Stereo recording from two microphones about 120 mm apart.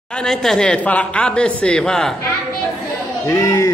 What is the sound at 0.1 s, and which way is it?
A woman's voice, 5° left (ahead or behind).